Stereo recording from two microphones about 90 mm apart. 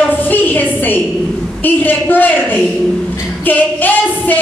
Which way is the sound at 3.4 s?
20° left (ahead or behind).